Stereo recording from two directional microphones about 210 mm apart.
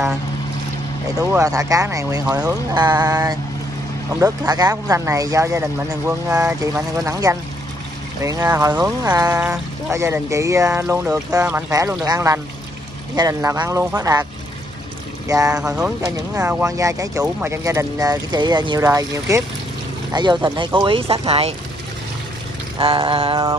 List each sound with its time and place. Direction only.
1.1 s speech: 15° right (ahead or behind)
15.2 s speech: 15° right (ahead or behind)
15.5 s speech: 5° right (ahead or behind); by 21.5 s 30° right (ahead or behind)
22.8 s speech: 25° right (ahead or behind)